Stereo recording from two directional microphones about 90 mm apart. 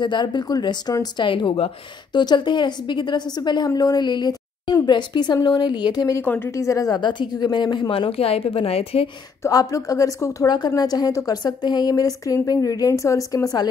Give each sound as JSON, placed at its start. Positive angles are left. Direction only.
{"t": 0.0, "sound": "a woman's voice", "side_deg": 60}
{"t": 1.1, "sound": "a woman's voice", "side_deg": 60}
{"t": 6.2, "sound": "a woman's voice", "side_deg": 20}
{"t": 6.5, "sound": "a woman's voice", "side_deg": 35}
{"t": 7.0, "sound": "a woman's voice", "side_deg": 60}
{"t": 7.9, "sound": "speech", "side_deg": 90}
{"t": 9.5, "sound": "a woman's voice", "side_deg": 40}